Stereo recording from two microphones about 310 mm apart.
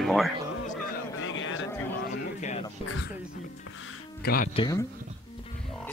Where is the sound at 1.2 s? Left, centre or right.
Left.